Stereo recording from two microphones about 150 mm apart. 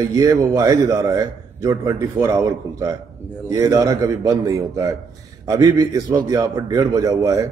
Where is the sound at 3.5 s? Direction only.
20° right (ahead or behind).